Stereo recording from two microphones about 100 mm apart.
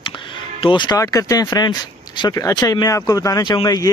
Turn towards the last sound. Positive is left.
turn(degrees=40)  # may be behind; listen again after turning